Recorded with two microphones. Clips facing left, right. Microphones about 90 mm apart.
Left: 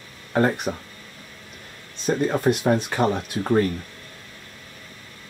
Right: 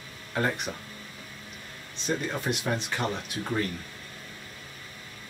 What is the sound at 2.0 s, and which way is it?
Speech, 45° left (ahead or behind).